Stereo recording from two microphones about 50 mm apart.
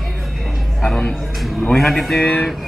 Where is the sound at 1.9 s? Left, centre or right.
Centre.